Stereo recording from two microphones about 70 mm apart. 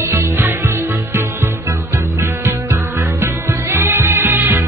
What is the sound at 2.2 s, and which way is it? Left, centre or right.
Music, right.